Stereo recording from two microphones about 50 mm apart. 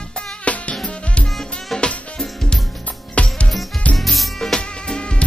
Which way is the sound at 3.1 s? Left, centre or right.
Left.